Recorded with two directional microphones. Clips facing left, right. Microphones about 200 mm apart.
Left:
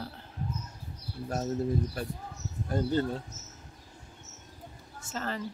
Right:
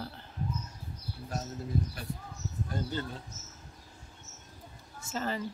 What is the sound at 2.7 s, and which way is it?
Speech, 40° left (ahead or behind).